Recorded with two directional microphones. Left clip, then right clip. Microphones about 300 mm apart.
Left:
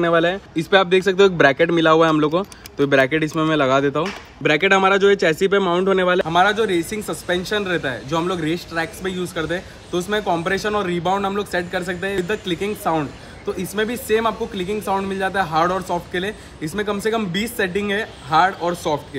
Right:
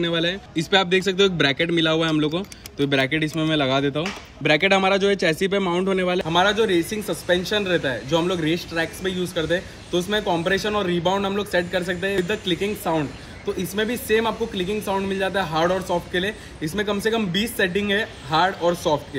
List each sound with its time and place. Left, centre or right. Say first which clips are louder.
0.2 s speech: left 4 dB; centre
5.7 s speech: left 5 dB; left
6.2 s speech: left 2 dB; centre